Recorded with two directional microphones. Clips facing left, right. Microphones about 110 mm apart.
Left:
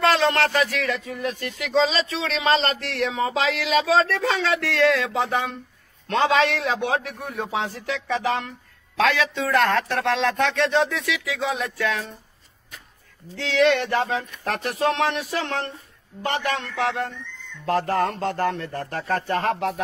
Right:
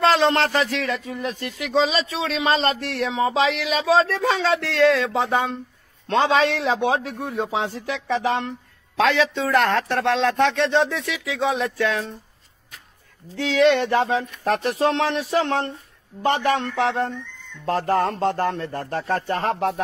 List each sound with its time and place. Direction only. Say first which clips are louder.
0.0 s speech: right 2 dB; 20° right (ahead or behind)
13.5 s speech: right 2 dB; 20° right (ahead or behind)